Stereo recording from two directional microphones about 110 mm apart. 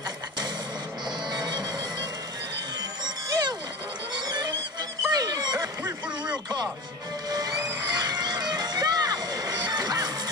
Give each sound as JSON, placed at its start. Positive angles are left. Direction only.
{"t": 1.3, "sound": "a sound", "side_deg": -40}
{"t": 2.8, "sound": "music", "side_deg": -40}
{"t": 7.2, "sound": "music", "side_deg": -35}